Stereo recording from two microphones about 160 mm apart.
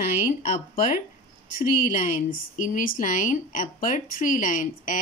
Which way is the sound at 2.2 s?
55° left (ahead or behind).